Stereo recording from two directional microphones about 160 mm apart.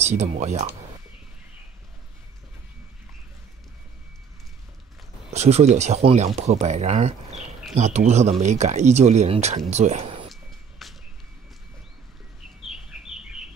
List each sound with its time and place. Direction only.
0.1 s speech: 45° right (ahead or behind)
5.3 s speech: 45° right (ahead or behind)
10.3 s vehicle: centre (ahead or behind)
12.6 s bird: 5° right (ahead or behind)